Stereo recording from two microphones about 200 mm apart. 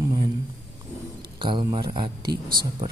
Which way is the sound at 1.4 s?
25° right (ahead or behind).